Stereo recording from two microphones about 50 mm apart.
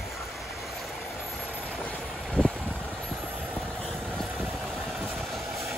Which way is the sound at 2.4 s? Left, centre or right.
Centre.